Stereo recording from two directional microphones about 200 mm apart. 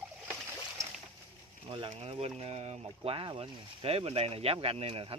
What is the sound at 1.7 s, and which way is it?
Speech, 30° right (ahead or behind).